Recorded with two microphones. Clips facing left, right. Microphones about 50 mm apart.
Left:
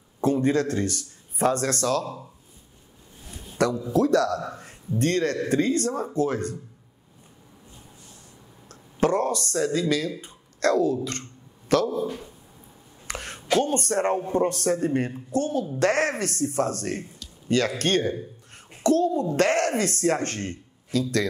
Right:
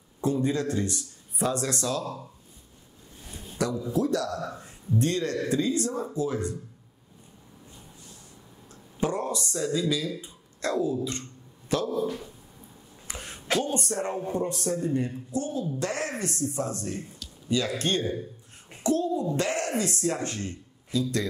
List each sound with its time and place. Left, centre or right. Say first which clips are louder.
0.2 s speech: left 4 dB; left
3.6 s speech: left 5 dB; left
9.0 s speech: left 6 dB; left
10.2 s a sound: left 8 dB; left
11.9 s speech: even; centre
13.0 s a sound: left 5 dB; left
13.6 s speech: left 6 dB; left
18.8 s a sound: left 5 dB; left
19.3 s speech: left 6 dB; left